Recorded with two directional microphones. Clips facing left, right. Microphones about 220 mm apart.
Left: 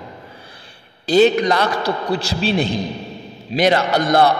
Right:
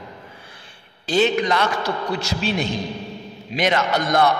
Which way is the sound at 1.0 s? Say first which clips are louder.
Left 6 dB; 40° left (ahead or behind).